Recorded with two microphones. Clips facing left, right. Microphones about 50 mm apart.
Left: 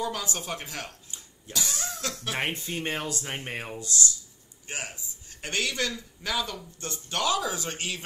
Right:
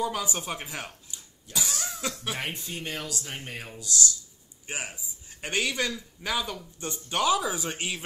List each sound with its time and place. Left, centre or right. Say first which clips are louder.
0.0 s a man's voice: right 2 dB; centre
2.3 s speech: left 4 dB; left
4.6 s a man's voice: right 1 dB; centre